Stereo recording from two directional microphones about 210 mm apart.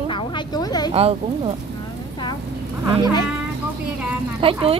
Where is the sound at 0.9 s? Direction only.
30° right (ahead or behind).